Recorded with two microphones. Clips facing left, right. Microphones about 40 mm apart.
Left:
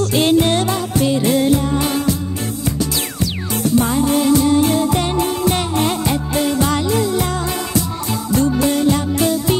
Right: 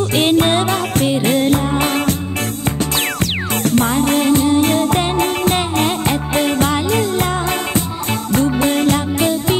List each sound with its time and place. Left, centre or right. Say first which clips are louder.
0.2 s music: right 1 dB; right
3.7 s music: even; right
8.3 s music: even; right
9.2 s music: even; right